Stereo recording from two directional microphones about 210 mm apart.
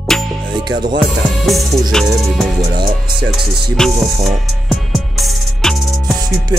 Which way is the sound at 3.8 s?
Centre (ahead or behind).